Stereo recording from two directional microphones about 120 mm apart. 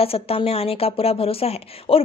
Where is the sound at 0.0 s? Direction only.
55° left (ahead or behind).